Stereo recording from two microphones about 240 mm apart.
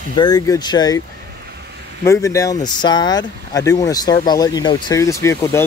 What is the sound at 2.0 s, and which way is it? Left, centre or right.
Speech, centre.